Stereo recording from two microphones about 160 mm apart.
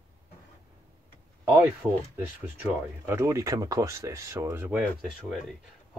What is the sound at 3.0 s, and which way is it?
Speech, 15° right (ahead or behind).